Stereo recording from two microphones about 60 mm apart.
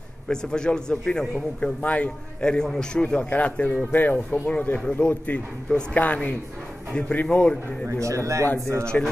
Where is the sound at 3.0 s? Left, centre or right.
Left.